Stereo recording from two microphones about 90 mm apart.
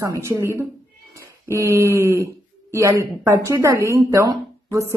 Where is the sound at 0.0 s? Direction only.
35° right (ahead or behind).